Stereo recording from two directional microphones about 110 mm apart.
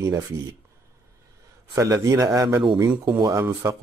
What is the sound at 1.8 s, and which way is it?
Speech, 30° right (ahead or behind).